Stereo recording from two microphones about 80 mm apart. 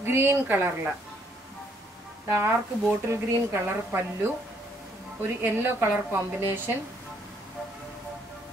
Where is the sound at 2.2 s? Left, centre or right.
Right.